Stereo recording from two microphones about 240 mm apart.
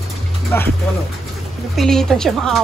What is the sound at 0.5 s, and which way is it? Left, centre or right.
Speech, centre.